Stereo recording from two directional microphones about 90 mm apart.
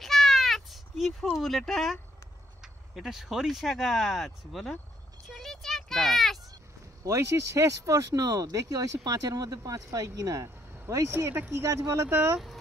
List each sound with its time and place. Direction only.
0.0 s meow: centre (ahead or behind)
1.3 s speech: centre (ahead or behind)
5.3 s a sound: 5° left (ahead or behind)
7.1 s speech: 35° right (ahead or behind)
11.1 s speech: 25° right (ahead or behind)